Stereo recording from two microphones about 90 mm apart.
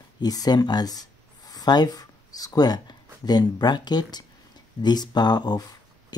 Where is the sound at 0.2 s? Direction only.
45° left (ahead or behind).